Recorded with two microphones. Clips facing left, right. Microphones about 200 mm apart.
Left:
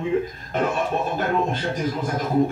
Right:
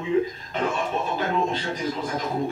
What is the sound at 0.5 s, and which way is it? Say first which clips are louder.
Speech: left 4 dB; 55° left (ahead or behind).